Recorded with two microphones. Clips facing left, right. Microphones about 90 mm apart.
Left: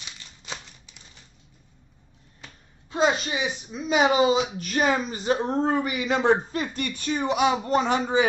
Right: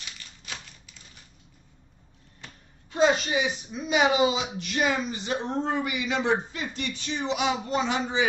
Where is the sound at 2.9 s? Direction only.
30° left (ahead or behind).